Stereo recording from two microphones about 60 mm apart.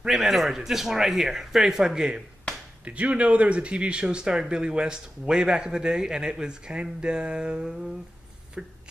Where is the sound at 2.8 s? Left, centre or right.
Right.